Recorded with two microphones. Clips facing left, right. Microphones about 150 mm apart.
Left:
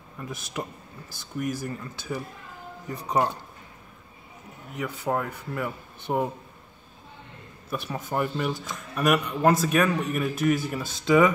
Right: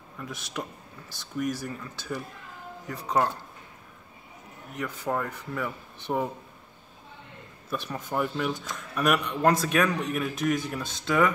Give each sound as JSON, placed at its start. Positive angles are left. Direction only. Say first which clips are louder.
{"t": 0.2, "sound": "speech", "louder": "left 2 dB", "side_deg": 10}
{"t": 4.7, "sound": "speech", "louder": "left 2 dB", "side_deg": 10}
{"t": 7.7, "sound": "speech", "louder": "left 1 dB", "side_deg": 10}